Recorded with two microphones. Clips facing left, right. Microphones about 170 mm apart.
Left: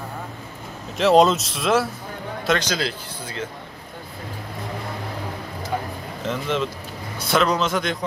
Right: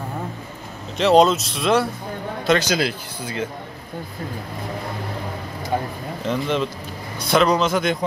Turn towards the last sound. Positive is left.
turn(degrees=-5)  # may be behind; listen again after turning